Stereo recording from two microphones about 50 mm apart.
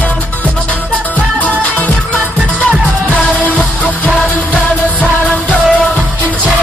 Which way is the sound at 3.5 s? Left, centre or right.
Left.